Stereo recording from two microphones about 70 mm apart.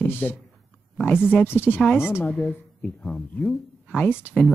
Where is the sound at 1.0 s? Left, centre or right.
Left.